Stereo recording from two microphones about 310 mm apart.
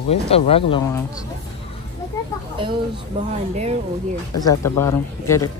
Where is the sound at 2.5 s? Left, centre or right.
Centre.